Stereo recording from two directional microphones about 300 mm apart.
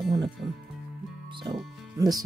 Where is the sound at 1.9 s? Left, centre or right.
Centre.